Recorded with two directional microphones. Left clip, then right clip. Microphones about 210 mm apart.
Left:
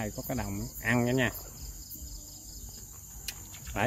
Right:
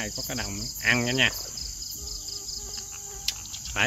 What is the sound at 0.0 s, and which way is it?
Cricket, 10° left (ahead or behind).